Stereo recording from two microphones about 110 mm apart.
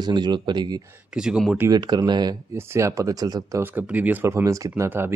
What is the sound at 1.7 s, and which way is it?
Speech, 40° right (ahead or behind).